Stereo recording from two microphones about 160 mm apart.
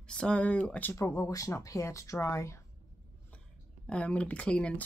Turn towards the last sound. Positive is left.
turn(degrees=5)  # may be behind; listen again after turning